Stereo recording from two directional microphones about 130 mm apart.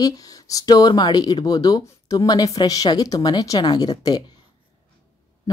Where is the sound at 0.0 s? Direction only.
25° left (ahead or behind).